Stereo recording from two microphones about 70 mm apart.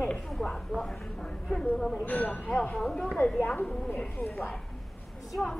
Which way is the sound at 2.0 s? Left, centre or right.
Left.